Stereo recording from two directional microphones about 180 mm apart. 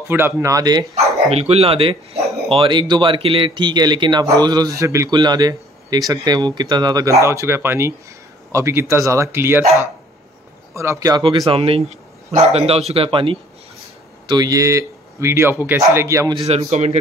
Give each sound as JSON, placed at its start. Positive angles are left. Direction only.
{"t": 0.1, "sound": "speech", "side_deg": -15}
{"t": 0.9, "sound": "speech", "side_deg": -35}
{"t": 10.7, "sound": "speech", "side_deg": -15}
{"t": 16.3, "sound": "speech", "side_deg": -35}